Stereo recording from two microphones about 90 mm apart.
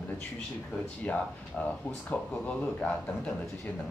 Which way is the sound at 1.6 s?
10° left (ahead or behind).